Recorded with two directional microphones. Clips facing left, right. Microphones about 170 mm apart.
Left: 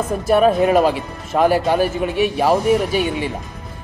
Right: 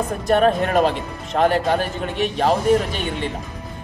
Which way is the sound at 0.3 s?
5° left (ahead or behind).